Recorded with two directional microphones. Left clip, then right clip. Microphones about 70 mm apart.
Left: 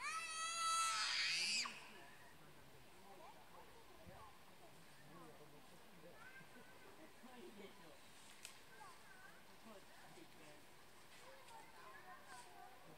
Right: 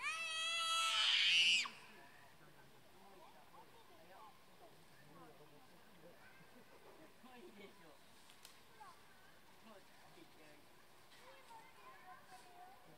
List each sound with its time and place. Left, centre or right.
0.0 s baby cry: right